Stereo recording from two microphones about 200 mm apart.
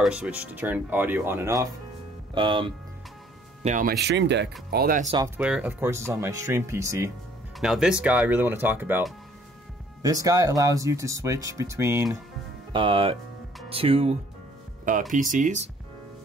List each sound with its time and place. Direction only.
0.0 s speech: 5° right (ahead or behind)
2.3 s speech: 25° right (ahead or behind)
3.6 s speech: 40° right (ahead or behind)
4.0 s speech: 60° right (ahead or behind); by 5.1 s 45° right (ahead or behind)
5.4 s speech: 5° right (ahead or behind)
7.6 s speech: 5° right (ahead or behind)
12.7 s speech: 25° right (ahead or behind)
15.1 s speech: 40° right (ahead or behind)